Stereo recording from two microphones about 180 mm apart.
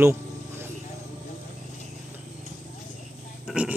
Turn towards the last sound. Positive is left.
turn(degrees=-5)  # may be behind; listen again after turning